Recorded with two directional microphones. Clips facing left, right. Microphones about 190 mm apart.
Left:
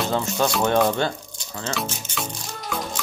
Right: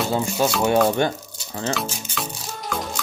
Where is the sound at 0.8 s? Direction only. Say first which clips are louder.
Right 2 dB; 15° right (ahead or behind).